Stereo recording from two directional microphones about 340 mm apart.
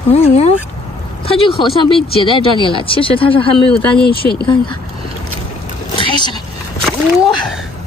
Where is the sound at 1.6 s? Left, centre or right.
Centre.